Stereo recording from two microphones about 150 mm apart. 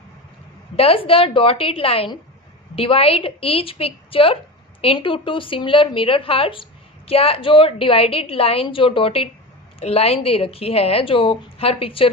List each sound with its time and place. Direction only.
0.7 s a woman's voice: 40° left (ahead or behind)